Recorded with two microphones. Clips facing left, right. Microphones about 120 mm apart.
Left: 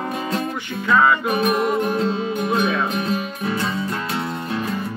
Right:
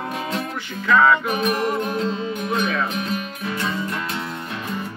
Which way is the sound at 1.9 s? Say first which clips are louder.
Left 3 dB; 35° left (ahead or behind).